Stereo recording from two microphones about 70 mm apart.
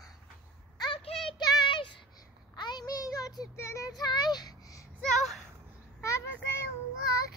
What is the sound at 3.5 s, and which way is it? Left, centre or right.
Child singing, left.